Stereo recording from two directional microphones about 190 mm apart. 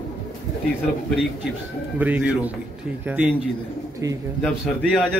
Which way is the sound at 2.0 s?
10° right (ahead or behind).